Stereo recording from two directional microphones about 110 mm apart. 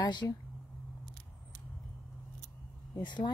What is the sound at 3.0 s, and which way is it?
Speech, 45° left (ahead or behind).